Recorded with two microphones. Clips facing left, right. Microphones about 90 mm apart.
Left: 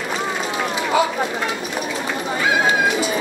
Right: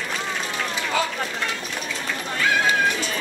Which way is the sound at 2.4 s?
15° left (ahead or behind).